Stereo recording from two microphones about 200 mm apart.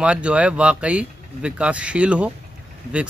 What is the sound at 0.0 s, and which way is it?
Speech, 5° right (ahead or behind).